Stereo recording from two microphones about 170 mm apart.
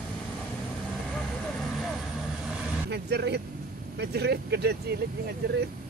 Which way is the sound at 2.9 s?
80° right.